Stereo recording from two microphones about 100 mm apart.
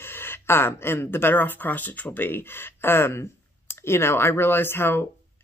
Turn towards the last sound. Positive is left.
turn(degrees=20)  # may be behind; listen again after turning